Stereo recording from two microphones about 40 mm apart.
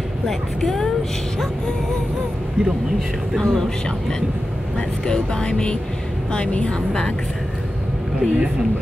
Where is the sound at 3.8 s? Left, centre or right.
Centre.